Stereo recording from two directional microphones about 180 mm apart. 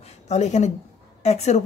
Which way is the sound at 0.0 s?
40° left (ahead or behind).